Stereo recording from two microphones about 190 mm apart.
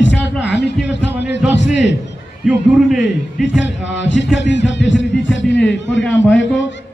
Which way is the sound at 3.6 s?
70° left (ahead or behind).